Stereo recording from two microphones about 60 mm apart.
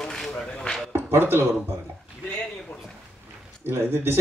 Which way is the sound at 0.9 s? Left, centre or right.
Right.